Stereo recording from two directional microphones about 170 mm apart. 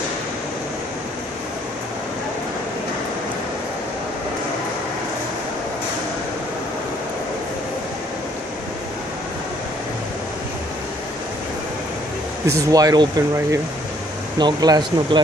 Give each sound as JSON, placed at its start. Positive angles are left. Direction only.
{"t": 12.4, "sound": "speech", "side_deg": -20}